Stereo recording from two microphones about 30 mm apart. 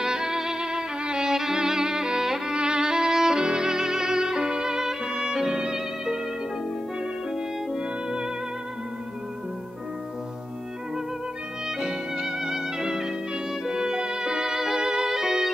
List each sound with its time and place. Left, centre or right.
0.0 s violin: right
2.5 s violin: right
7.7 s music: right
11.8 s music: centre
14.9 s violin: centre